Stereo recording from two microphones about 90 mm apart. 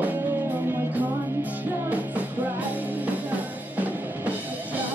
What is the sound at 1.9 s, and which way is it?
Music, 20° right (ahead or behind).